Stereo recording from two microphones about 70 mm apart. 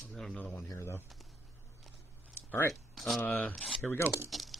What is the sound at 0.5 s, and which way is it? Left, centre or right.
Speech, left.